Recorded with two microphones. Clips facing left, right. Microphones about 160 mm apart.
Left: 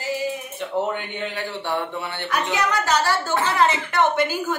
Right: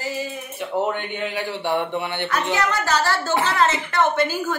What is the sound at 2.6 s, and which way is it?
A woman's voice, 15° left (ahead or behind).